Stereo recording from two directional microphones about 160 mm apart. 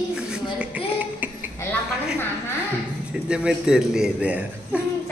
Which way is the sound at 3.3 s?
5° right (ahead or behind).